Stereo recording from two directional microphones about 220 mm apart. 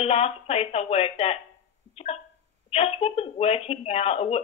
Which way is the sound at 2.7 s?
25° left (ahead or behind).